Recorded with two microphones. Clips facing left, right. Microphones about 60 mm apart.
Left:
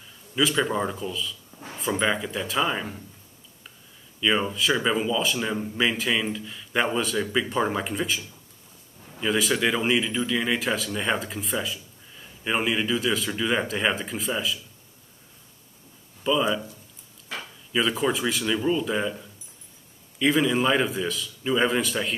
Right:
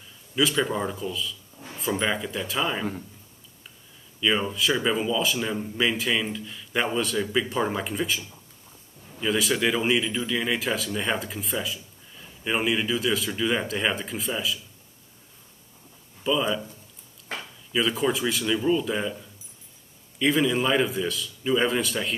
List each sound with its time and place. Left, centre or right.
0.4 s speech: centre
4.2 s speech: centre
9.2 s speech: centre
16.3 s speech: centre
17.7 s speech: centre
20.2 s speech: centre